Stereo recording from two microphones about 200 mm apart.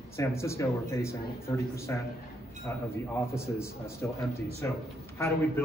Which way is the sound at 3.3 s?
15° left (ahead or behind).